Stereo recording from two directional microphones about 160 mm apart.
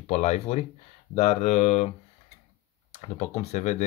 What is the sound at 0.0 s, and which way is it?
Speech, 45° left (ahead or behind).